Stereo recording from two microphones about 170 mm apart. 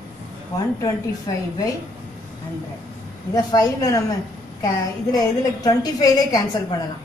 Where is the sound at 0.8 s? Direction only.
20° left (ahead or behind).